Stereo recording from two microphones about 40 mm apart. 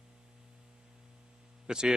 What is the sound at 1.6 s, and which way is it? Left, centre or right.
Hum, centre.